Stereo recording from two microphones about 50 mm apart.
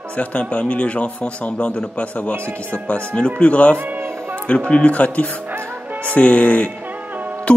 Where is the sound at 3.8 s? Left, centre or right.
Right.